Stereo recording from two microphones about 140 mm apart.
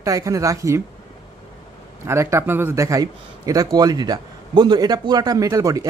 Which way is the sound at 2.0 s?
20° right (ahead or behind).